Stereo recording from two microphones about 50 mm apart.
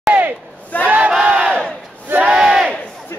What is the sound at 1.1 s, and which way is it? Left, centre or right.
Crowd, centre.